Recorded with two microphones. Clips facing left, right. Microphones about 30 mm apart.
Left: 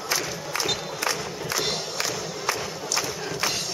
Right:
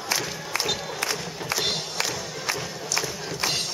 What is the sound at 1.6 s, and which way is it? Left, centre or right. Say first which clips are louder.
Crowd: right 2 dB; right.